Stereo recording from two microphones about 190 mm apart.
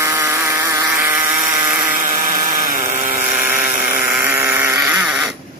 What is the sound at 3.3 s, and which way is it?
Vehicle, 10° right (ahead or behind).